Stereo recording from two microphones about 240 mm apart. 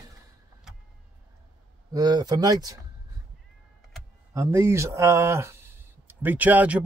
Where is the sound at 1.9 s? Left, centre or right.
Centre.